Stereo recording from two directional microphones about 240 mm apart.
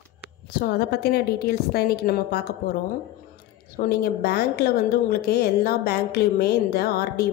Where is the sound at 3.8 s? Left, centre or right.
Left.